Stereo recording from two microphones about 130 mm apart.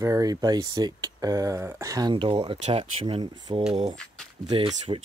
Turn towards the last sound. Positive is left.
turn(degrees=-45)  # may be behind; listen again after turning